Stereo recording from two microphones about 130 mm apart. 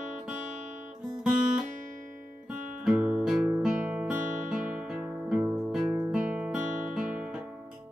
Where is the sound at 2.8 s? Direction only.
10° right (ahead or behind).